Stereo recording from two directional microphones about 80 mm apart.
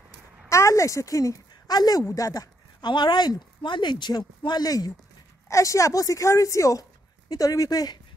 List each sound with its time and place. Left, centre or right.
0.5 s speech: left
2.9 s speech: left
5.5 s a woman's voice: left